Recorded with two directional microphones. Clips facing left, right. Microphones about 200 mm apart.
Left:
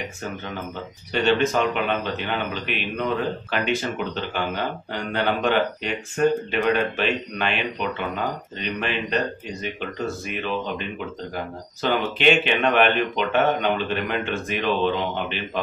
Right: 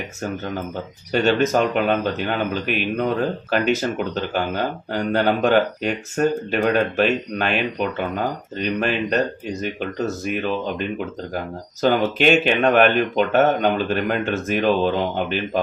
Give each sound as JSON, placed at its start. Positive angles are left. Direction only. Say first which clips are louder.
{"t": 1.1, "sound": "a man's voice", "louder": "right 3 dB", "side_deg": -40}
{"t": 8.5, "sound": "a man's voice", "louder": "right 7 dB", "side_deg": -40}